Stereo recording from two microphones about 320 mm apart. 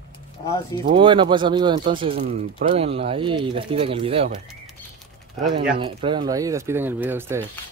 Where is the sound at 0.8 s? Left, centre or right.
Centre.